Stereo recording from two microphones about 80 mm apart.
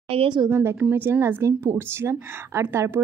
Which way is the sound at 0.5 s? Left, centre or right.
Right.